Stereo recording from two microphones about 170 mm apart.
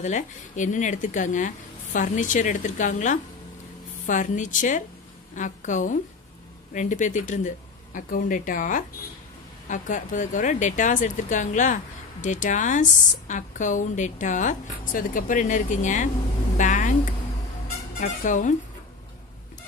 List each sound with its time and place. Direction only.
0.0 s speech: 45° left (ahead or behind)
16.5 s a sound: 50° left (ahead or behind)
17.9 s speech: 50° left (ahead or behind)